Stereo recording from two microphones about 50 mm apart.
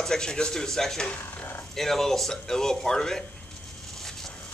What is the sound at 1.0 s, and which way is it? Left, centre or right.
Speech, left.